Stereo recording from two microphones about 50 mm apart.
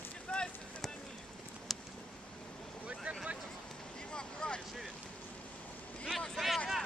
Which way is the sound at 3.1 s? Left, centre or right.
Right.